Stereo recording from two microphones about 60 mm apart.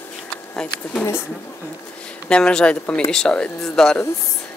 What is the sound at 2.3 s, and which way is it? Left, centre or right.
Speech, centre.